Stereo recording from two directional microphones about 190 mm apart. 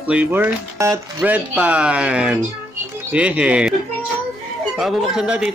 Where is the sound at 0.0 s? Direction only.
10° right (ahead or behind).